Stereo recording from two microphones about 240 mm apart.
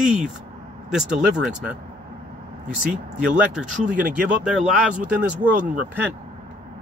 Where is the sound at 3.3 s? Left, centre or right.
Centre.